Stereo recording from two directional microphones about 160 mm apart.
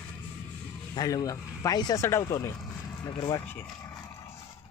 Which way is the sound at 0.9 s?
25° left (ahead or behind).